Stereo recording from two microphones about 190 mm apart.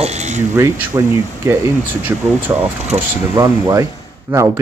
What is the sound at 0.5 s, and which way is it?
Speech, 15° right (ahead or behind).